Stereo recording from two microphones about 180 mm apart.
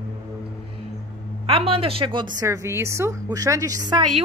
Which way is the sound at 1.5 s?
30° right (ahead or behind).